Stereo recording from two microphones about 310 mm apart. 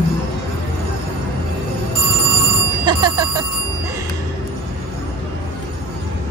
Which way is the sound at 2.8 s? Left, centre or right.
Centre.